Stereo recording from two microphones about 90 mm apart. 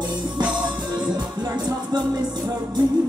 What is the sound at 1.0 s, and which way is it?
Music, 55° right (ahead or behind).